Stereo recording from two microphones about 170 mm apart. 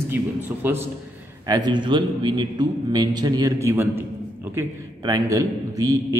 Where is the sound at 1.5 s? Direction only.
25° right (ahead or behind).